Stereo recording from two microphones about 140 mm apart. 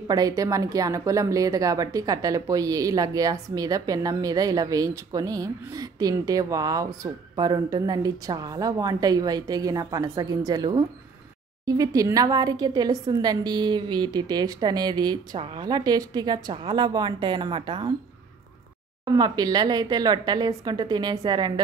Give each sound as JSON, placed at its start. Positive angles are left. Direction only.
{"t": 0.1, "sound": "a woman's voice", "side_deg": -25}
{"t": 19.1, "sound": "a woman's voice", "side_deg": -30}